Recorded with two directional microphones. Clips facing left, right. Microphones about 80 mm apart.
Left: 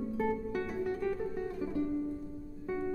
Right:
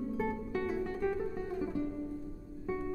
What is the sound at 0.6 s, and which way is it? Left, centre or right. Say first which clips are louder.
Music: right 3 dB; centre.